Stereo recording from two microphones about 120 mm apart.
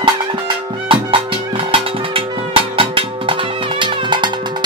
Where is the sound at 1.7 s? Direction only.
50° right (ahead or behind).